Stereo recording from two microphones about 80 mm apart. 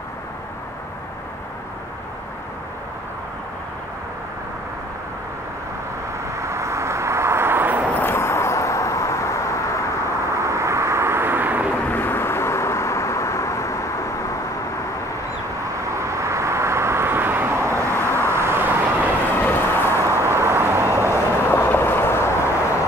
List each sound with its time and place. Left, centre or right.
6.4 s vehicle: right
8.0 s vehicle: left
10.3 s vehicle: right
11.9 s vehicle: left
16.0 s vehicle: right
17.9 s vehicle: left
18.2 s vehicle: right
19.4 s a sound: left
20.0 s vehicle: right
21.1 s vehicle: left